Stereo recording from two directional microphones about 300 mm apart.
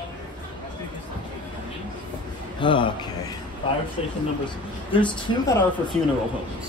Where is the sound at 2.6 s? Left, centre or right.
Centre.